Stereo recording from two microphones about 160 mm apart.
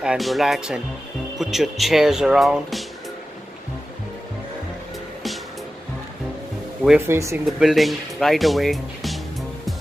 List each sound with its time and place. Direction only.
0.0 s speech: centre (ahead or behind)
7.1 s speech: 15° right (ahead or behind)
7.4 s speech: centre (ahead or behind)